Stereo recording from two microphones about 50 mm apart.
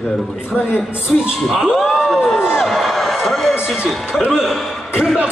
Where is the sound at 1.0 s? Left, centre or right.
Centre.